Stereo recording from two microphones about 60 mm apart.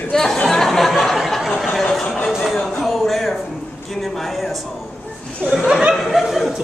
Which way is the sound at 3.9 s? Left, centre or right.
Centre.